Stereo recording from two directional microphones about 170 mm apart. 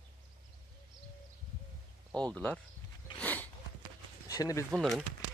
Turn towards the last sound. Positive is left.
turn(degrees=0)  # may be behind; listen again after turning